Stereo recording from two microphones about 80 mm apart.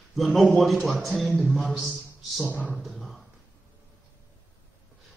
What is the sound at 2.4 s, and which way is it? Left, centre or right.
Speech, centre.